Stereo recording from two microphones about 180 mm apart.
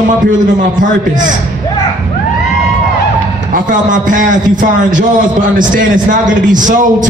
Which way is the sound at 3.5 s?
45° right (ahead or behind).